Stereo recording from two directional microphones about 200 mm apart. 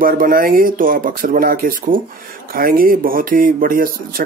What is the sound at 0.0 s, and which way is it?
Speech, 45° right (ahead or behind).